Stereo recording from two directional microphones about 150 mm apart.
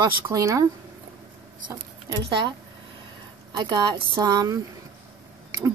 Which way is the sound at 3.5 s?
30° right (ahead or behind).